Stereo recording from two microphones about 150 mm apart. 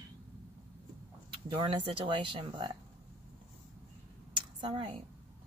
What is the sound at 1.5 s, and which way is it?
Speech, 35° right (ahead or behind).